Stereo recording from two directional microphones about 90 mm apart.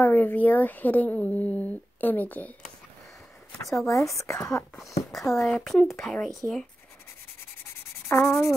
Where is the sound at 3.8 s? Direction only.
35° left (ahead or behind).